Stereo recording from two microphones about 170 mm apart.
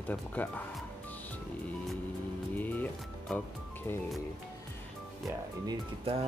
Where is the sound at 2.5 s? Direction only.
10° left (ahead or behind).